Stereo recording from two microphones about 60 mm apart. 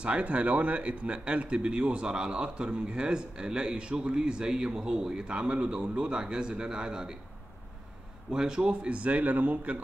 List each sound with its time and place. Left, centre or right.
0.0 s speech: right
8.3 s a man's voice: centre